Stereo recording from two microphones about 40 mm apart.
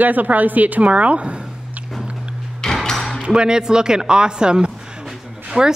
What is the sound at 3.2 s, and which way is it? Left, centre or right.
A woman's voice, right.